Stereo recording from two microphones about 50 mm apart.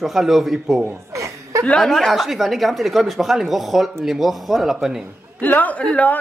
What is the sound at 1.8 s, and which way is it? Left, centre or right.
Speech, centre.